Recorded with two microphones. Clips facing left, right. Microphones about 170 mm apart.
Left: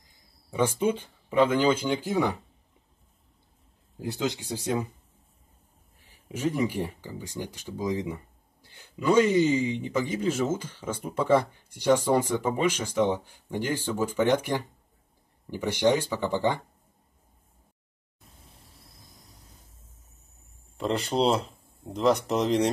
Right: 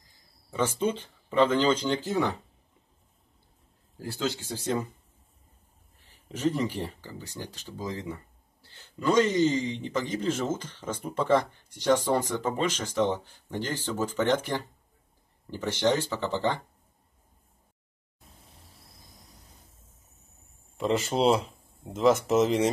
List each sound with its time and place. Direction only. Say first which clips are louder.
0.0 s a sound: left 1 dB; 20° left (ahead or behind)
0.6 s a man's voice: left 2 dB; 10° left (ahead or behind)
4.0 s a man's voice: left 2 dB; 20° left (ahead or behind)
6.0 s a man's voice: right 1 dB; 10° left (ahead or behind)
18.3 s a sound: even; centre (ahead or behind)
20.7 s speech: even; centre (ahead or behind)